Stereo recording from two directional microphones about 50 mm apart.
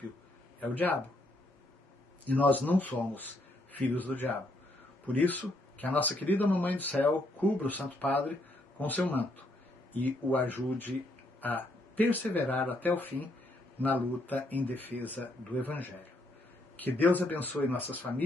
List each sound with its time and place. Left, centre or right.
0.6 s speech: left
2.2 s speech: left